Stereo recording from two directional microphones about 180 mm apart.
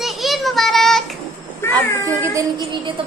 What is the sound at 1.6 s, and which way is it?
Cat, 15° left (ahead or behind).